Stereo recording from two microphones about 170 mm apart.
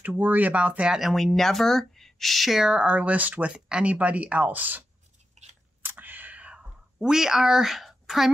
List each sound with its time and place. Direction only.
0.0 s speech: 10° right (ahead or behind)
5.4 s chewing: 45° right (ahead or behind)
5.8 s whispering: 10° right (ahead or behind)